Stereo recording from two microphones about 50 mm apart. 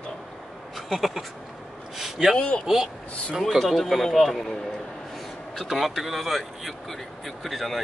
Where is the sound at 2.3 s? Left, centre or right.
Centre.